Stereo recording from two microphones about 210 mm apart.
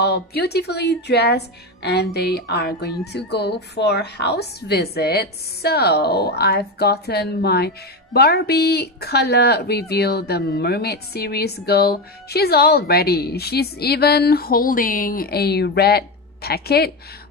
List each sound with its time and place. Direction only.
0.0 s a woman's voice: 50° left (ahead or behind)